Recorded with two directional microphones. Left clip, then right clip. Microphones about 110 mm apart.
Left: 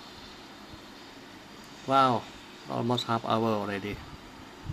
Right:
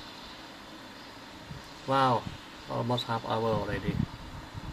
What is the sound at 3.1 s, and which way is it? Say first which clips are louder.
Speech: left 2 dB; 90° left.